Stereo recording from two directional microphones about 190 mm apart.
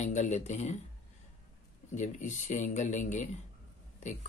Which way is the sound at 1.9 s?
40° left (ahead or behind).